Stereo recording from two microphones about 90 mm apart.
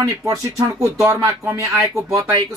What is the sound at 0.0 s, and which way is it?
Speech, 35° right (ahead or behind).